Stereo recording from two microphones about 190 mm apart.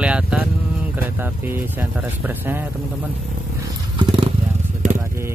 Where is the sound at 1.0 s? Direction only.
10° right (ahead or behind).